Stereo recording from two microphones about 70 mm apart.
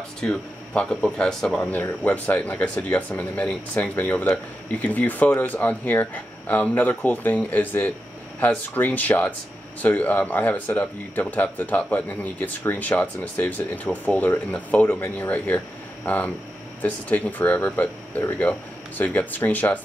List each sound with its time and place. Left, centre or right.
0.2 s speech: centre
1.7 s speech: left